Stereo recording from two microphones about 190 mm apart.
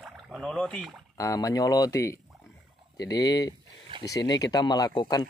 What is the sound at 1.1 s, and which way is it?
A man's voice, 15° left (ahead or behind).